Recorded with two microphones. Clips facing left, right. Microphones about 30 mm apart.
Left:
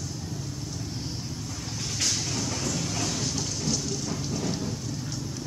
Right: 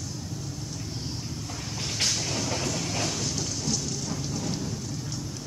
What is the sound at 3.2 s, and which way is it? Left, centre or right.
Rain, centre.